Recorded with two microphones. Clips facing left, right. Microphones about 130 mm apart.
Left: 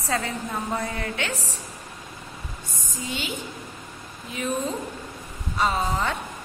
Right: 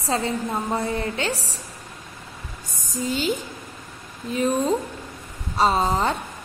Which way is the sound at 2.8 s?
40° right (ahead or behind).